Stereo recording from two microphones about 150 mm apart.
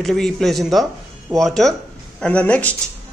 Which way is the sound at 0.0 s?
5° left (ahead or behind).